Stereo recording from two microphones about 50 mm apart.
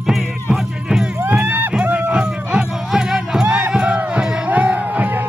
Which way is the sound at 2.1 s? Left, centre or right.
Centre.